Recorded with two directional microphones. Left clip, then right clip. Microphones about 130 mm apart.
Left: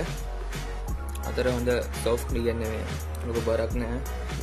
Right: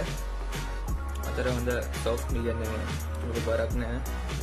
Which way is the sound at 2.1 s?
30° left (ahead or behind).